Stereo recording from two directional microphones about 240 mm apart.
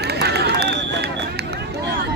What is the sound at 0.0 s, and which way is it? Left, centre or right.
Run, right.